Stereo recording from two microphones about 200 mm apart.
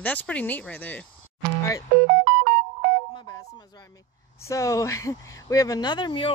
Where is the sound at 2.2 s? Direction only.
40° right (ahead or behind).